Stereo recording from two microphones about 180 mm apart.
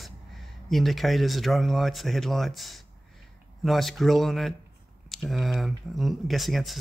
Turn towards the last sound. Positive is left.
turn(degrees=0)  # may be behind; listen again after turning